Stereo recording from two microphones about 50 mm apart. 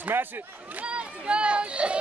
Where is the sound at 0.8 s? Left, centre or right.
Right.